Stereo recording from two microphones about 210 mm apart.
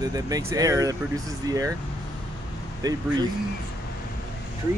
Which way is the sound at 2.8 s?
20° right (ahead or behind).